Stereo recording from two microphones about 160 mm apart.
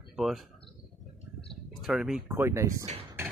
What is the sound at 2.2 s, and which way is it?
Speech, 15° right (ahead or behind).